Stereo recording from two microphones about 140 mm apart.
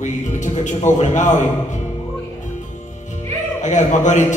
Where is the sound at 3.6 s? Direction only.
60° left (ahead or behind).